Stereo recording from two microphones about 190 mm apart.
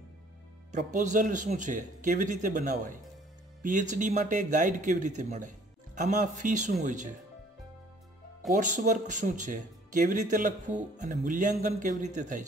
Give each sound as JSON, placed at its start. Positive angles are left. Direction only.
{"t": 0.7, "sound": "speech", "side_deg": -40}
{"t": 8.5, "sound": "speech", "side_deg": -40}